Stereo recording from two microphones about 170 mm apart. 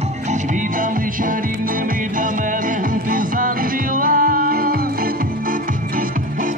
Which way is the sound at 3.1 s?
55° right (ahead or behind).